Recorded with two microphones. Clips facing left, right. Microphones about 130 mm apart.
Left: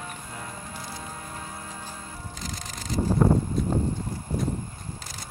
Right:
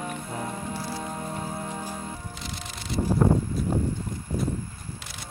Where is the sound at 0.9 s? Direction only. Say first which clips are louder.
Right 6 dB; 30° right (ahead or behind).